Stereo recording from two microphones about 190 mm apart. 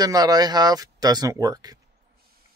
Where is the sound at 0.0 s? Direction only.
20° right (ahead or behind).